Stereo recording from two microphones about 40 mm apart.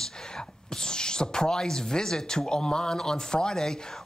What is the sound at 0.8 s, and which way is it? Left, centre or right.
Speech, centre.